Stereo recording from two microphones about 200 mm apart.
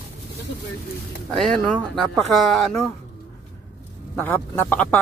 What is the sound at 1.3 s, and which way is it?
Speech, centre (ahead or behind).